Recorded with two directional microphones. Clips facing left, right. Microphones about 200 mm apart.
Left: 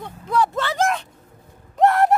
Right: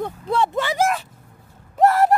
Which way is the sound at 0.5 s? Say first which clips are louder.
Right 1 dB; 10° right (ahead or behind).